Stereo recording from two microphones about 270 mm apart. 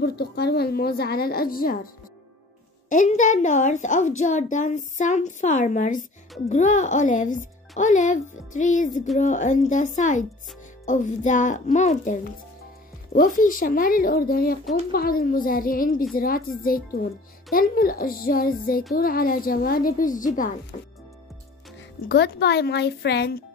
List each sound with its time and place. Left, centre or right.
0.0 s a woman's voice: left
2.9 s a child's voice: left
21.7 s a woman's voice: left